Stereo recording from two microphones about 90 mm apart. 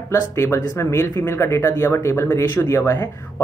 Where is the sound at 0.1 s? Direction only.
30° left (ahead or behind).